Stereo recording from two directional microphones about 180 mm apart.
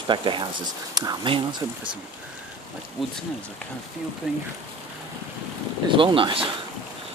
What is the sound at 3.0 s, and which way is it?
Speech, centre (ahead or behind).